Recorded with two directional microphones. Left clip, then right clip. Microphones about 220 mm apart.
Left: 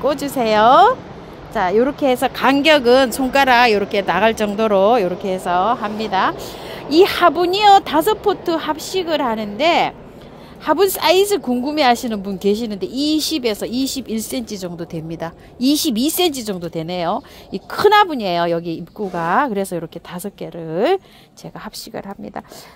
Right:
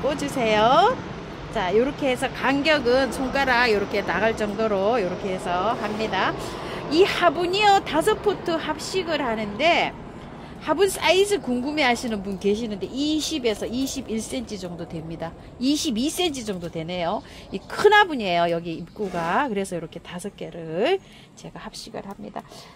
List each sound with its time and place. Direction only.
0.0 s a woman's voice: 35° left (ahead or behind)